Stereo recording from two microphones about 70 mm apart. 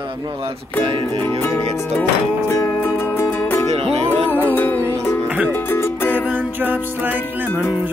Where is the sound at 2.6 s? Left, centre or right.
Left.